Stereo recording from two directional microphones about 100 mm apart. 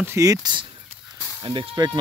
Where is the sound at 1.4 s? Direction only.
55° right (ahead or behind).